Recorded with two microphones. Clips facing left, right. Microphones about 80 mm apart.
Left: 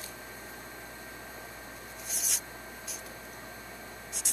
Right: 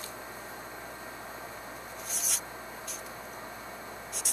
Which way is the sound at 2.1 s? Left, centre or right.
Centre.